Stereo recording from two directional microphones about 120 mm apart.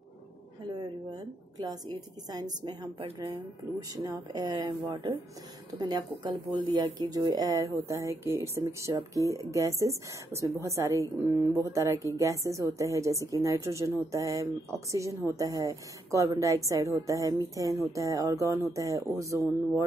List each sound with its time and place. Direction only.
0.7 s a woman's voice: 35° right (ahead or behind)